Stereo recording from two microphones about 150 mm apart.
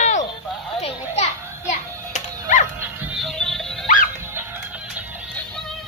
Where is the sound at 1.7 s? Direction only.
50° left (ahead or behind).